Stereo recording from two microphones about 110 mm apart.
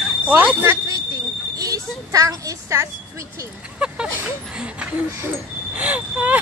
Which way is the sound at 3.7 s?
10° right (ahead or behind).